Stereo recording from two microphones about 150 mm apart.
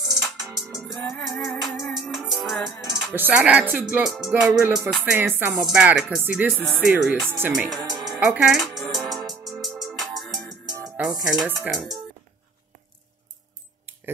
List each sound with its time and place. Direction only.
0.0 s music: 5° right (ahead or behind)
1.1 s speech: centre (ahead or behind)
1.8 s music: centre (ahead or behind)
3.1 s speech: 10° right (ahead or behind)
5.2 s speech: 15° right (ahead or behind)
7.5 s speech: centre (ahead or behind)
8.2 s music: 5° right (ahead or behind)
10.6 s music: 25° right (ahead or behind)
11.4 s speech: 15° right (ahead or behind)
11.7 s speech: centre (ahead or behind)